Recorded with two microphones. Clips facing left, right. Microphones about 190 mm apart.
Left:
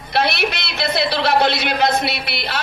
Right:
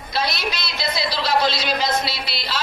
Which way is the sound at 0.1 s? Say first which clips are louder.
Left 5 dB; 65° left (ahead or behind).